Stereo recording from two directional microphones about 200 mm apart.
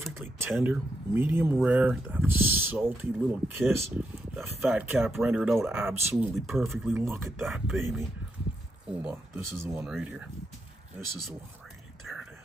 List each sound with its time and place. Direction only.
0.0 s speech: 10° right (ahead or behind)
6.3 s speech: centre (ahead or behind)